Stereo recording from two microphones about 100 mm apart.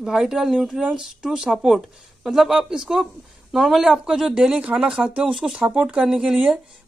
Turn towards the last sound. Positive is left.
turn(degrees=-10)  # may be behind; listen again after turning